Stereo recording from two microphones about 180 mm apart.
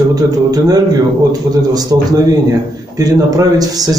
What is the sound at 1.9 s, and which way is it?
A man's voice, 20° right (ahead or behind).